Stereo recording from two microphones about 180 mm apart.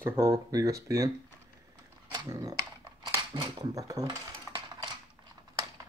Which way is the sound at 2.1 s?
20° right (ahead or behind).